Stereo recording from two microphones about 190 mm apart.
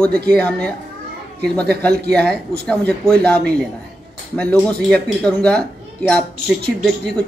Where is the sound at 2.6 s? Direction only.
5° left (ahead or behind).